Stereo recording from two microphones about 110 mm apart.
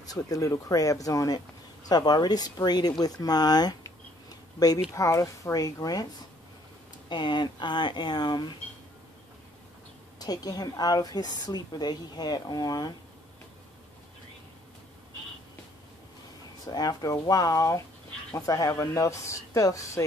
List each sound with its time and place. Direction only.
0.0 s a woman's voice: 35° left (ahead or behind)
4.3 s a sound: 35° left (ahead or behind)
4.9 s a woman's voice: 30° left (ahead or behind)
7.1 s speech: 45° left (ahead or behind)
10.1 s a woman's voice: 35° left (ahead or behind)
16.6 s a woman's voice: 35° left (ahead or behind)